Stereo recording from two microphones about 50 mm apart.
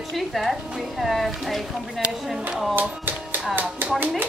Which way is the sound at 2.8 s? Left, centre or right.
Right.